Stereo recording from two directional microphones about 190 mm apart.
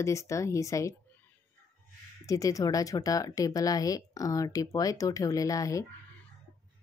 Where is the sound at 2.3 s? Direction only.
15° left (ahead or behind).